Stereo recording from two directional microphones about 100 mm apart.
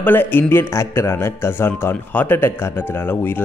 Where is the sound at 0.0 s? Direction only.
20° left (ahead or behind).